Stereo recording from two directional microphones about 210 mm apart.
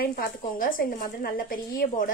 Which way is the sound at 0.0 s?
45° left (ahead or behind).